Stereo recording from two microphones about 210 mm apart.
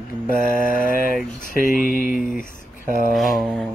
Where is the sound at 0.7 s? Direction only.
40° left (ahead or behind).